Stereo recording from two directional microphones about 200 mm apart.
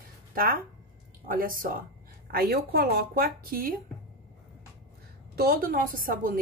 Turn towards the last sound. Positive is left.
turn(degrees=-45)  # may be behind; listen again after turning